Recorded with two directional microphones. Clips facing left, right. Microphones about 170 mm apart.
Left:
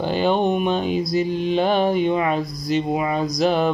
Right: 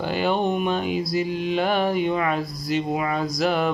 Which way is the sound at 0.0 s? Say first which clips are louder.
Left 3 dB; 20° left (ahead or behind).